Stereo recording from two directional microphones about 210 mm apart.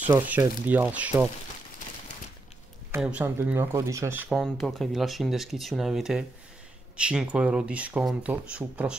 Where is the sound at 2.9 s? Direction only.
10° right (ahead or behind).